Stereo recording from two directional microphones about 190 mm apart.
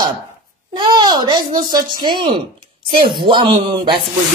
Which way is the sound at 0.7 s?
20° right (ahead or behind).